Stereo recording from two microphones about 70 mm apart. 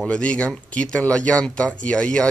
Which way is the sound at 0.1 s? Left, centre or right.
Centre.